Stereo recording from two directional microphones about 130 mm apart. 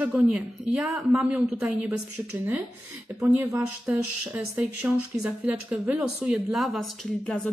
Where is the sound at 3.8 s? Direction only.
10° right (ahead or behind).